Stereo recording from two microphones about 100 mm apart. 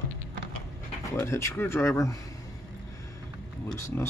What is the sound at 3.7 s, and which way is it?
Speech, 25° left (ahead or behind).